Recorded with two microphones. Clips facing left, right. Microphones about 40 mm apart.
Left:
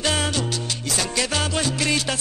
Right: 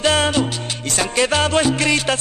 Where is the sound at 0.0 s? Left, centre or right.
Right.